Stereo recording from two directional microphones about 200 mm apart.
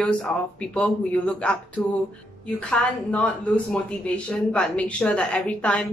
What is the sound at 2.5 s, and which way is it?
Speech, 5° left (ahead or behind).